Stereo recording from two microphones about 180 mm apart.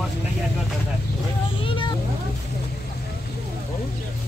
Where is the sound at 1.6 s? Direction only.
30° left (ahead or behind).